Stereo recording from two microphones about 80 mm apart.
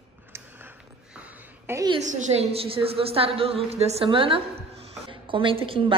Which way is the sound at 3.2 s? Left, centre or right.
Right.